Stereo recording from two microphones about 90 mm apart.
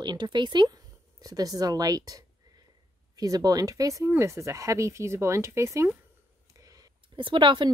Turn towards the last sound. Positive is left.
turn(degrees=-65)  # may be behind; listen again after turning